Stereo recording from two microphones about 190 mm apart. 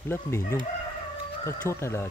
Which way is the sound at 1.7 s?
15° left (ahead or behind).